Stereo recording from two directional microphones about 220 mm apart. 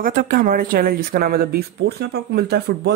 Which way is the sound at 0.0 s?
40° right (ahead or behind).